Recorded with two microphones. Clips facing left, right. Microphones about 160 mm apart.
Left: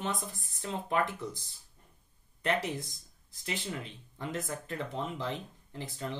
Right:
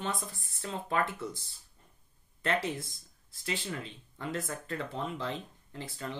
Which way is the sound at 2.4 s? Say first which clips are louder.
Even; 20° left (ahead or behind).